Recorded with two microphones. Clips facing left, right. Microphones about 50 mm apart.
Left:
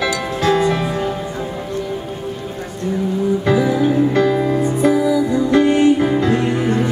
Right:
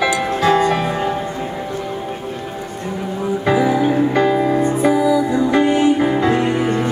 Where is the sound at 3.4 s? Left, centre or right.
Centre.